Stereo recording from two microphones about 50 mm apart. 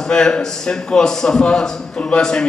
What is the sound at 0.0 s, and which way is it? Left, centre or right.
A man's voice, centre.